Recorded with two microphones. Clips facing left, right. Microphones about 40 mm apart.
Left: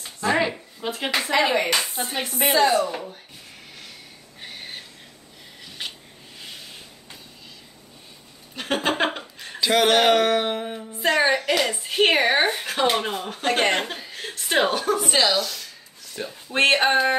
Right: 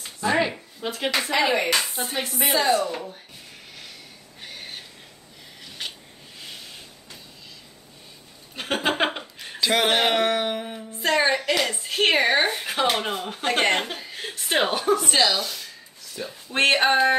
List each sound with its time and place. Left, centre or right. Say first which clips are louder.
0.0 s speech: left 1 dB; centre
4.4 s a sound: left 1 dB; centre
8.5 s a sound: even; centre
11.0 s a woman's voice: left 1 dB; centre
12.6 s speech: left 1 dB; centre
15.0 s speech: left 1 dB; centre
15.4 s a sound: left 1 dB; centre
16.2 s speech: left 1 dB; left
16.5 s speech: left 1 dB; centre